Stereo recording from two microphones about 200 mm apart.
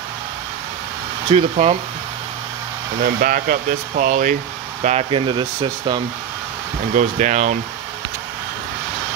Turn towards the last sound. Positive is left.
turn(degrees=-40)  # may be behind; listen again after turning